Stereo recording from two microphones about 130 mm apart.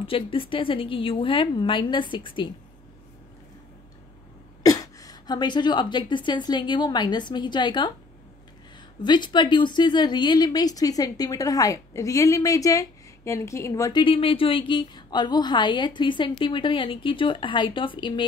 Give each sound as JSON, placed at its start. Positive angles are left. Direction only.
{"t": 0.0, "sound": "a woman's voice", "side_deg": 45}
{"t": 4.6, "sound": "a woman's voice", "side_deg": 30}
{"t": 9.0, "sound": "a woman's voice", "side_deg": 35}
{"t": 14.0, "sound": "a woman's voice", "side_deg": 45}